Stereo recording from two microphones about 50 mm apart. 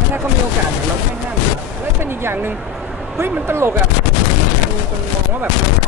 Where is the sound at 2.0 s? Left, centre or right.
Right.